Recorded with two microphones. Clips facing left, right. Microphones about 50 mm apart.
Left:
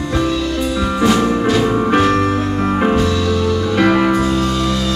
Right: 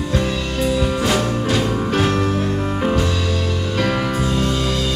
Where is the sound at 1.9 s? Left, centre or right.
Left.